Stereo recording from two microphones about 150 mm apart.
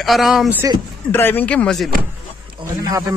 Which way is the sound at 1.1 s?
15° left (ahead or behind).